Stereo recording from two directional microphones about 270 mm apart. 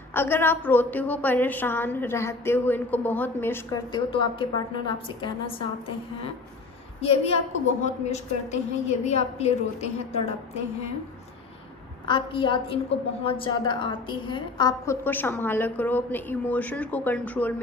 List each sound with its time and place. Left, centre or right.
0.1 s a woman's voice: centre
7.0 s a woman's voice: left
12.1 s a woman's voice: centre